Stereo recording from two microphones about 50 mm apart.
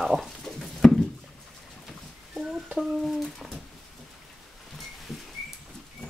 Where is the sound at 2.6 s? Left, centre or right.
Centre.